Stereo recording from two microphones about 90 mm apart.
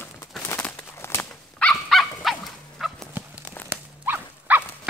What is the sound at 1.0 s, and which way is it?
Horse, 30° left (ahead or behind).